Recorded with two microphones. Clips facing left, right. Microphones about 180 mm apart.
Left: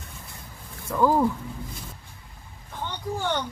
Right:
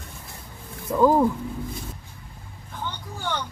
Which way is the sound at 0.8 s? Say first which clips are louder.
Right 3 dB; 15° right (ahead or behind).